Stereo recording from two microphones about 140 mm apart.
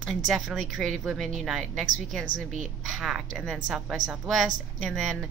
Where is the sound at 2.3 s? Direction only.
60° right (ahead or behind).